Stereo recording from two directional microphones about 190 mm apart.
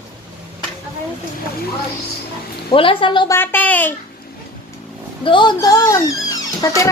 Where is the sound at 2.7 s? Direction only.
25° left (ahead or behind).